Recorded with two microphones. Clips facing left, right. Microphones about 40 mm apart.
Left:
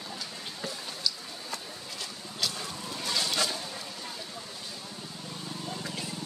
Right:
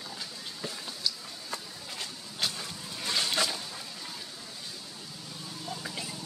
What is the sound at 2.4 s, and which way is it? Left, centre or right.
Vehicle, right.